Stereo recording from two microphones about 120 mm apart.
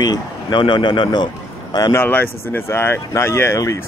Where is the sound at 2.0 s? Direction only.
15° left (ahead or behind).